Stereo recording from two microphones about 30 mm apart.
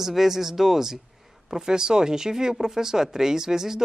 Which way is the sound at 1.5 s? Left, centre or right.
Right.